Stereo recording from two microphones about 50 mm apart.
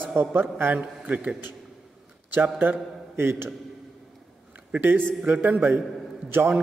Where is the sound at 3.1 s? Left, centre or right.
Right.